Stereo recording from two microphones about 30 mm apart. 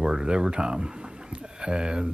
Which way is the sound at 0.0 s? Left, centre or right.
Right.